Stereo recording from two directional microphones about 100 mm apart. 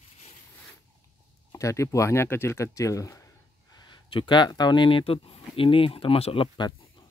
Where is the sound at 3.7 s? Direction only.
50° left (ahead or behind).